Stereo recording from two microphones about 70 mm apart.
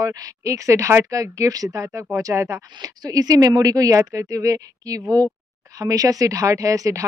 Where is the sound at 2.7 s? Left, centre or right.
Right.